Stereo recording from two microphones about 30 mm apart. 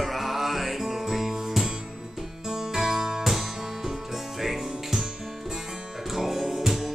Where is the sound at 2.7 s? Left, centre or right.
Centre.